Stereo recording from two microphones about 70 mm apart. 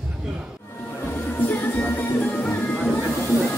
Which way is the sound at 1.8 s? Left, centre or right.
Left.